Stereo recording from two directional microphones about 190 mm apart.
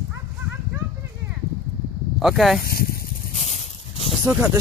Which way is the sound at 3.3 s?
35° left (ahead or behind).